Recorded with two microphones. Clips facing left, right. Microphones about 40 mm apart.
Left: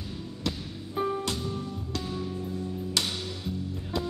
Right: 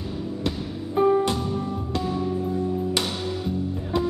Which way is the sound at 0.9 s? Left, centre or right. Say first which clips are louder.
Right 10 dB; centre.